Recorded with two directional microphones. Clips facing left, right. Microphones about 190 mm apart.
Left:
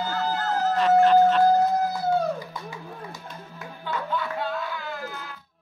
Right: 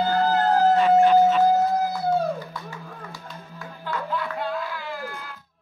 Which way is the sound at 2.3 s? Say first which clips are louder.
Even; 15° left (ahead or behind).